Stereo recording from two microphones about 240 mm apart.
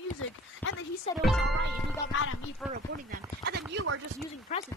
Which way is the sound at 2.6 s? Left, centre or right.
Centre.